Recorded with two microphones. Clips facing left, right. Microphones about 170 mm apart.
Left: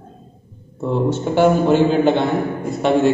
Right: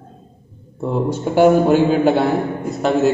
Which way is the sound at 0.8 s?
5° right (ahead or behind).